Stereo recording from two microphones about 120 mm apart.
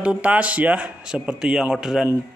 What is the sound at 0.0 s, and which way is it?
Speech, 10° right (ahead or behind).